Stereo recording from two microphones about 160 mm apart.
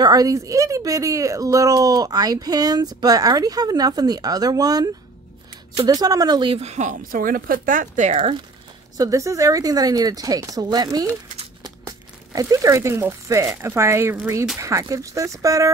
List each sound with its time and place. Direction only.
0.0 s speech: 25° right (ahead or behind)
5.9 s speech: 20° right (ahead or behind)
6.5 s speech: 45° right (ahead or behind)
8.9 s speech: 20° right (ahead or behind)